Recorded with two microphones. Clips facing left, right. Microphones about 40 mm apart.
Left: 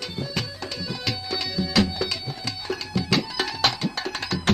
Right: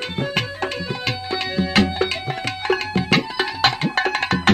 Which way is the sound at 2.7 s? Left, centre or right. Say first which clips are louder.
Right 6 dB; right.